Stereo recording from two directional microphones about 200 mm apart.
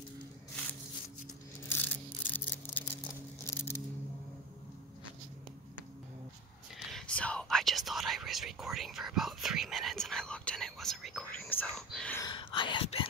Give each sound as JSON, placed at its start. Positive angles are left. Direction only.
{"t": 1.7, "sound": "a sound", "side_deg": 10}
{"t": 3.4, "sound": "scissors", "side_deg": 15}
{"t": 6.9, "sound": "whispering", "side_deg": 5}
{"t": 12.2, "sound": "whispering", "side_deg": 25}